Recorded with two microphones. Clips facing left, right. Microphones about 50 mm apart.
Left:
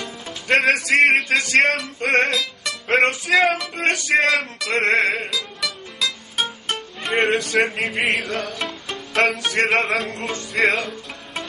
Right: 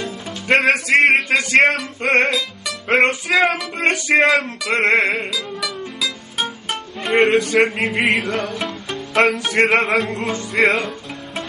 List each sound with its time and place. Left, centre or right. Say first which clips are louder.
0.5 s music: right 2 dB; centre
0.8 s a man's voice: right 2 dB; centre
1.6 s music: right 3 dB; centre
3.7 s music: right 2 dB; right
4.8 s music: right 3 dB; centre